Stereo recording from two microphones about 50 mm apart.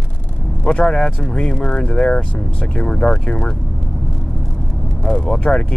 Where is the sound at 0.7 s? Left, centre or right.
Left.